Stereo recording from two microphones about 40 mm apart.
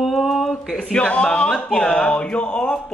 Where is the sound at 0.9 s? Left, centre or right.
Left.